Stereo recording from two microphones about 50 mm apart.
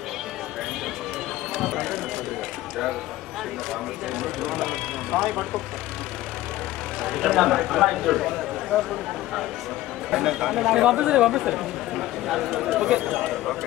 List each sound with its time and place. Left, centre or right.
1.5 s speech: centre
4.2 s speech: centre
7.0 s speech: centre
10.1 s speech: centre
12.8 s speech: centre
13.1 s speech: centre